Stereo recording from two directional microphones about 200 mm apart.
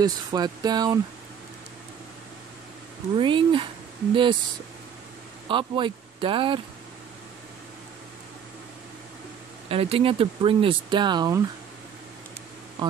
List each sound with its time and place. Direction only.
0.0 s speech: 20° right (ahead or behind)
3.2 s speech: 25° right (ahead or behind)
5.5 s speech: 25° right (ahead or behind)
9.7 s speech: 30° right (ahead or behind)